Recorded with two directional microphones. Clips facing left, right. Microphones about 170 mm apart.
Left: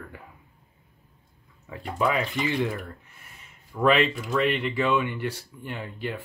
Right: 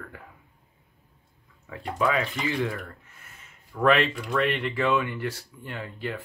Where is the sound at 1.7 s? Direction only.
15° left (ahead or behind).